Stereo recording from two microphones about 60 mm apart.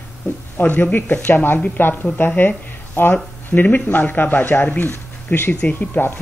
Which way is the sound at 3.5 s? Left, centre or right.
Left.